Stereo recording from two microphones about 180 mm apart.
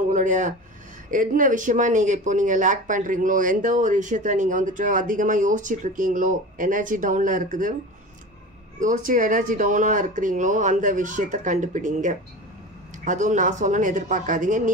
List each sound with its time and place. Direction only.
0.1 s speech: 45° right (ahead or behind)
8.7 s speech: 45° right (ahead or behind)